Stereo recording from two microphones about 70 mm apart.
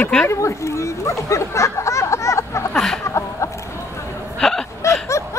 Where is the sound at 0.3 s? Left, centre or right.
Left.